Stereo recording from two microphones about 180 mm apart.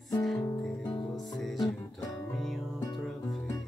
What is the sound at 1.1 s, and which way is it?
Music, centre (ahead or behind).